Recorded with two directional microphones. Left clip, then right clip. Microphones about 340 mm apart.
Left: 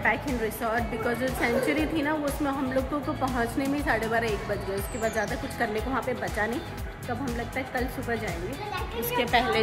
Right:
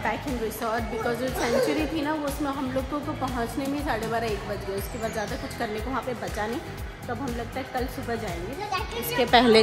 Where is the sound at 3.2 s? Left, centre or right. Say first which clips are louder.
Left 3 dB; centre.